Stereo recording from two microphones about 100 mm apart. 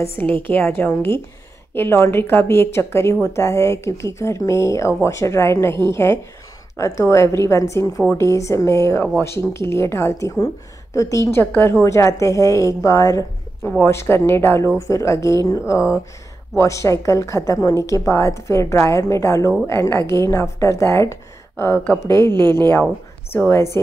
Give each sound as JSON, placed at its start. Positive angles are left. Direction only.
{"t": 0.0, "sound": "a woman's voice", "side_deg": 20}
{"t": 22.3, "sound": "a woman's voice", "side_deg": -45}
{"t": 23.3, "sound": "a woman's voice", "side_deg": 25}